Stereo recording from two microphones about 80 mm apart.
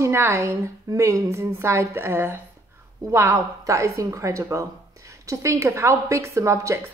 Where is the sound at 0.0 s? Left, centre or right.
Right.